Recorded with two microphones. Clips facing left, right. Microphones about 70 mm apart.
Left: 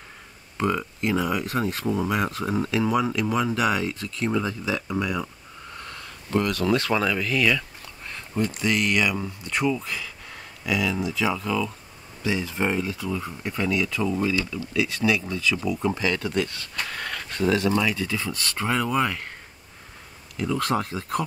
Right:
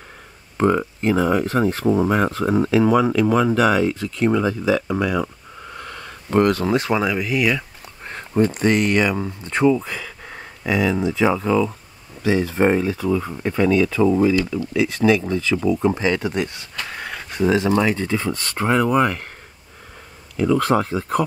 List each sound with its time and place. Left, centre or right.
0.6 s speech: right
2.8 s speech: right
5.9 s a sound: right
6.6 s speech: right
8.0 s speech: right
12.3 s speech: right
12.5 s speech: right
20.8 s speech: right